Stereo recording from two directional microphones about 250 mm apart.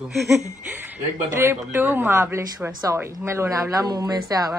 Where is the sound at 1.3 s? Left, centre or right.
Centre.